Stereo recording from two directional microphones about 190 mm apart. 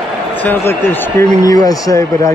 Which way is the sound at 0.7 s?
15° left (ahead or behind).